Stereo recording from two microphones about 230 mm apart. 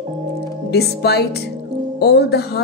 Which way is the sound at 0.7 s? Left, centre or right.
Left.